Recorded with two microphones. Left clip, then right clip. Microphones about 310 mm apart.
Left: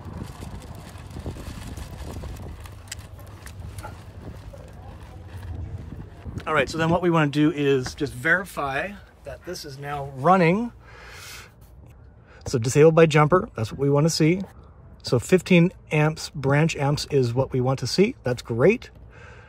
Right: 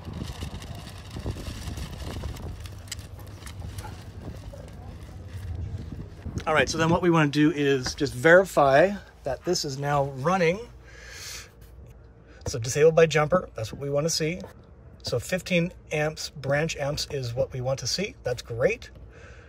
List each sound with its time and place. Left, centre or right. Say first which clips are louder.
1.2 s vehicle: even; centre
2.0 s a sound: even; centre
6.3 s speech: even; centre
8.2 s speech: right 6 dB; centre
10.1 s a sound: left 5 dB; centre
12.4 s speech: left 4 dB; centre